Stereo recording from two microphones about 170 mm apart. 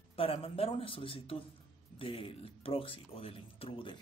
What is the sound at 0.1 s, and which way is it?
Speech, 35° left (ahead or behind).